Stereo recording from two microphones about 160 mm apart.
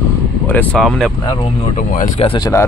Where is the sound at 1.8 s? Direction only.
55° left (ahead or behind).